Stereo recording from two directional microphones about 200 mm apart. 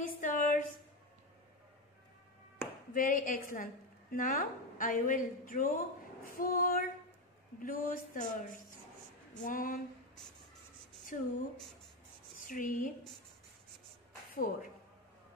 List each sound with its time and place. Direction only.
0.0 s a sound: 40° left (ahead or behind)
2.9 s a woman's voice: 45° left (ahead or behind)
11.1 s a woman's voice: 40° left (ahead or behind)
12.4 s speech: 40° left (ahead or behind)
14.3 s a woman's voice: 45° left (ahead or behind)